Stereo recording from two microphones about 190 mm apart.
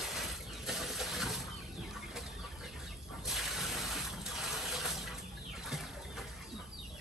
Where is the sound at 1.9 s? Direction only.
Centre (ahead or behind).